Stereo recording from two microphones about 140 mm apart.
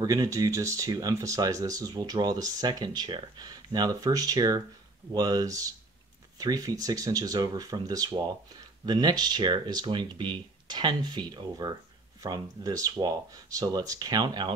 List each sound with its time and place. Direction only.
0.0 s speech: 25° right (ahead or behind)